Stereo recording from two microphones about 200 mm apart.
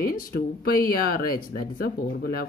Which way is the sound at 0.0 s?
45° left (ahead or behind).